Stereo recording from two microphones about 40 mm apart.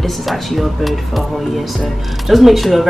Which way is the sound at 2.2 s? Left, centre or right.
Centre.